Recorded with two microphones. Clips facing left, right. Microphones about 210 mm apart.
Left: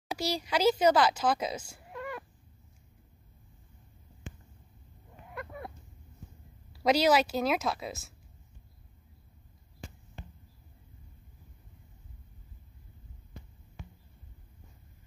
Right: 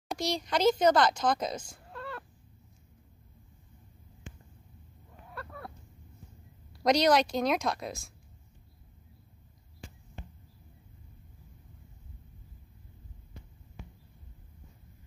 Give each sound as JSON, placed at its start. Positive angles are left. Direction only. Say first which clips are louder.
{"t": 0.1, "sound": "speech", "louder": "even", "side_deg": 5}
{"t": 5.3, "sound": "a sound", "louder": "left 2 dB", "side_deg": 15}
{"t": 6.7, "sound": "a woman's voice", "louder": "even", "side_deg": 5}